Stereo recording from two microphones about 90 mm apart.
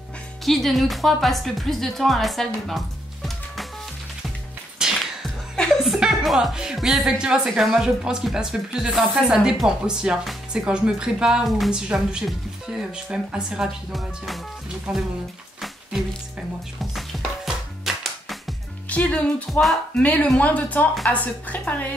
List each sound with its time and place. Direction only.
0.5 s speech: centre (ahead or behind)
4.7 s music: 5° right (ahead or behind)
5.9 s speech: 5° right (ahead or behind)
16.9 s music: centre (ahead or behind)
18.9 s speech: 15° left (ahead or behind)
20.0 s speech: 15° left (ahead or behind)